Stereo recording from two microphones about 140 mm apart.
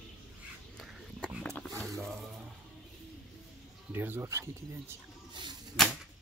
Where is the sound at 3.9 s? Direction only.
15° right (ahead or behind).